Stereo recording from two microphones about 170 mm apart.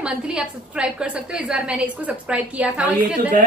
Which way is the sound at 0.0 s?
5° right (ahead or behind).